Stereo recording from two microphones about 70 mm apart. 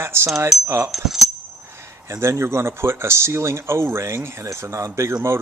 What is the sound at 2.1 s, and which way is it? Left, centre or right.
Speech, right.